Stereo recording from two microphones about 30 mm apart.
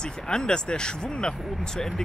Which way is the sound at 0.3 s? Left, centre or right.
Left.